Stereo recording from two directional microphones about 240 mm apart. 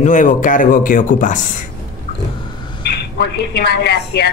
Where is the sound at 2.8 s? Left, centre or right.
Left.